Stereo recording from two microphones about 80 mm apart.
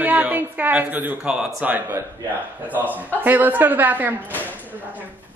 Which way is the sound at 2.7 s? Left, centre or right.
Right.